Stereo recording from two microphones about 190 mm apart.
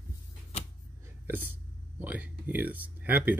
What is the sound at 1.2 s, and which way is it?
Speech, 10° right (ahead or behind).